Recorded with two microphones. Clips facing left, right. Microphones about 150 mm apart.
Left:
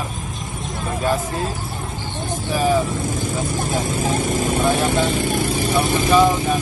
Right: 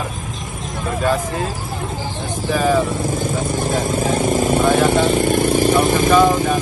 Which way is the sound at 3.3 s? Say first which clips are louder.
Right 3 dB; 50° right (ahead or behind).